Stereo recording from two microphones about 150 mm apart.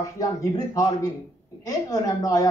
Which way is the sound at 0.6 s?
25° left (ahead or behind).